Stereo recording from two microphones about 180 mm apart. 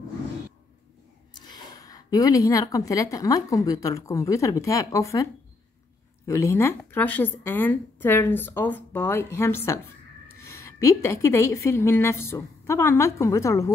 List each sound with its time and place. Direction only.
1.3 s a woman's voice: 25° left (ahead or behind)